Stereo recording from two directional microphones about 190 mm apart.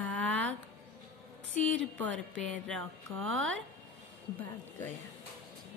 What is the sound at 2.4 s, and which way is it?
Speech, 5° left (ahead or behind).